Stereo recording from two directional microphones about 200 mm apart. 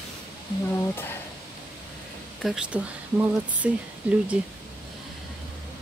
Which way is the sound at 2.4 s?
Centre (ahead or behind).